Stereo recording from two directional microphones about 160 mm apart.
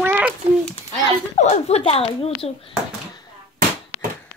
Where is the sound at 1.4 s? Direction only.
45° left (ahead or behind).